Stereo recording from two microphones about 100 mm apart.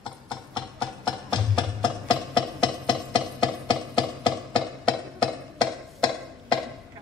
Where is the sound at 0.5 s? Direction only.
50° left (ahead or behind).